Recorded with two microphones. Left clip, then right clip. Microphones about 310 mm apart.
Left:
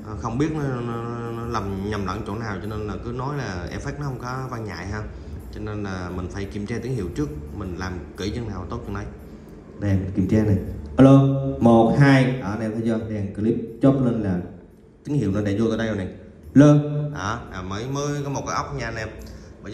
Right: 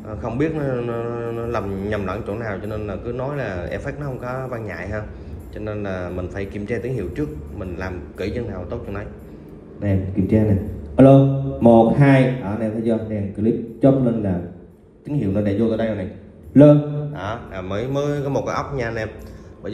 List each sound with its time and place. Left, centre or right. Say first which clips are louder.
0.2 s a man's voice: right 3 dB; centre
11.6 s speech: right 3 dB; left
16.5 s mantra: right 4 dB; centre
17.6 s a man's voice: right 6 dB; centre